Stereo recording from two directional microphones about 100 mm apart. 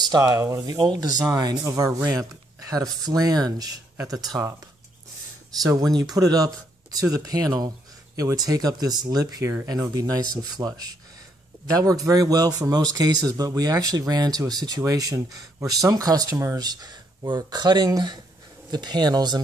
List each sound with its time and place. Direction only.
0.0 s speech: 40° right (ahead or behind)
5.6 s speech: 35° right (ahead or behind)